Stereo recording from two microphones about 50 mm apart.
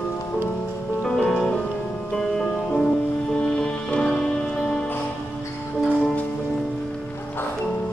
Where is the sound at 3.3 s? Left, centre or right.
Centre.